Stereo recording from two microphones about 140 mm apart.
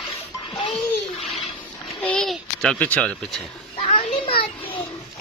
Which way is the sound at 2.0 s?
5° left (ahead or behind).